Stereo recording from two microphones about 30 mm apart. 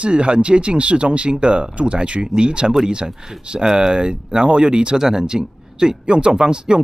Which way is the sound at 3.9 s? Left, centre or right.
Right.